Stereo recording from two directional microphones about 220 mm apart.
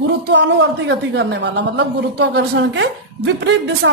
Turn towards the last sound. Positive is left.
turn(degrees=-55)  # may be behind; listen again after turning